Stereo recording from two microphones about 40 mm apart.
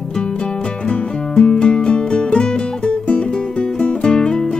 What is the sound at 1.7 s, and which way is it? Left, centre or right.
Music, left.